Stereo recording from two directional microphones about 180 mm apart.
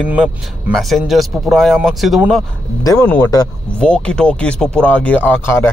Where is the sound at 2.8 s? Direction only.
20° left (ahead or behind).